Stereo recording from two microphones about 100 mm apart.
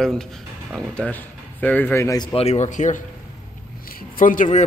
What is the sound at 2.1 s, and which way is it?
Speech, 35° left (ahead or behind).